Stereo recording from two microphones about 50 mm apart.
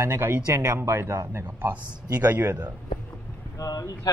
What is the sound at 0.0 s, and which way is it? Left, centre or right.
A man's voice, right.